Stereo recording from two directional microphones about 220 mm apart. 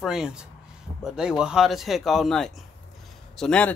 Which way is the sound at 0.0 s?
5° right (ahead or behind).